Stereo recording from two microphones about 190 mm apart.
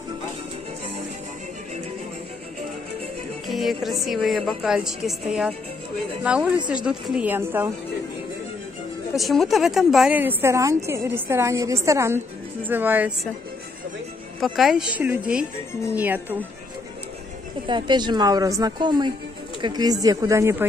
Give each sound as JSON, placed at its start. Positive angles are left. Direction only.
{"t": 3.4, "sound": "speech", "side_deg": 0}
{"t": 6.2, "sound": "a woman's voice", "side_deg": -5}
{"t": 9.1, "sound": "a woman's voice", "side_deg": 0}
{"t": 14.4, "sound": "a woman's voice", "side_deg": 0}
{"t": 17.6, "sound": "a woman's voice", "side_deg": -25}